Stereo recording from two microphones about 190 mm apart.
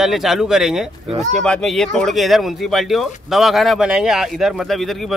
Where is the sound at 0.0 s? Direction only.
Centre (ahead or behind).